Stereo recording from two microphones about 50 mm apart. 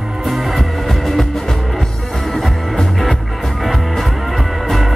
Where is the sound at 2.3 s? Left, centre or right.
Centre.